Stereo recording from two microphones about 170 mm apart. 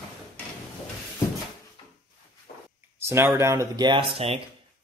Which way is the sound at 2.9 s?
15° right (ahead or behind).